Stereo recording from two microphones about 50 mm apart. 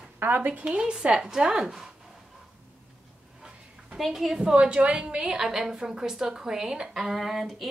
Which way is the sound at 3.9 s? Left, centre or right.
Centre.